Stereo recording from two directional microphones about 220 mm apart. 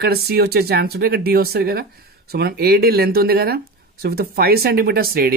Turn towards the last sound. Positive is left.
turn(degrees=-45)  # may be behind; listen again after turning